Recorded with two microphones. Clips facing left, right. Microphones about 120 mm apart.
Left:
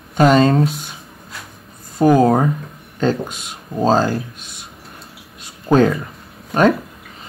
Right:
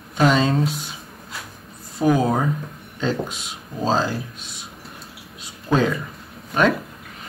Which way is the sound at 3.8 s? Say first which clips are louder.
Left 6 dB; 45° left (ahead or behind).